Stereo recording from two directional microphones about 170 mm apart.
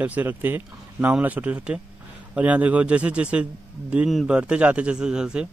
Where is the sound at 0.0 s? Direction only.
10° right (ahead or behind).